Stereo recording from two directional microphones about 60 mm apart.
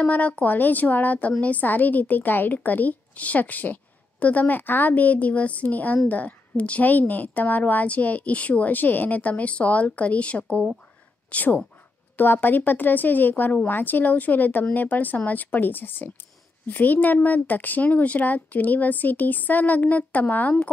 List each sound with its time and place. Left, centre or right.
0.0 s a woman's voice: left
12.2 s a woman's voice: left